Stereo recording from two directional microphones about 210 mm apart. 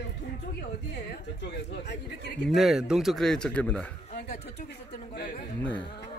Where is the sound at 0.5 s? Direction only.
50° left (ahead or behind).